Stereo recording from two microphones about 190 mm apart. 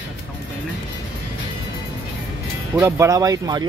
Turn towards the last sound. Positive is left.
turn(degrees=-20)  # may be behind; listen again after turning